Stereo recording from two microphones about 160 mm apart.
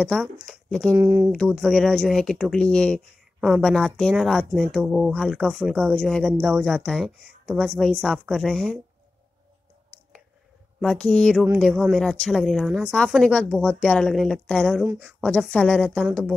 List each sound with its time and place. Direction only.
0.5 s speech: 5° left (ahead or behind)
0.9 s speech: 20° right (ahead or behind)
1.3 s speech: 5° left (ahead or behind)
3.3 s a woman's voice: 5° right (ahead or behind)
10.8 s a woman's voice: 5° left (ahead or behind)